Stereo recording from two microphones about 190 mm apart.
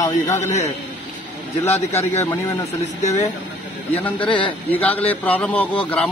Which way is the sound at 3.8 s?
30° left (ahead or behind).